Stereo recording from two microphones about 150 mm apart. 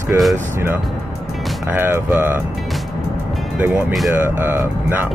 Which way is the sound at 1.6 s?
15° right (ahead or behind).